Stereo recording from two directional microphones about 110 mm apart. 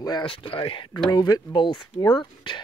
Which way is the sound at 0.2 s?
50° left (ahead or behind).